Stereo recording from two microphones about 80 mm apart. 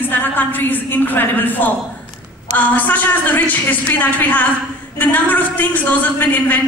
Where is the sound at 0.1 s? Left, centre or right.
Left.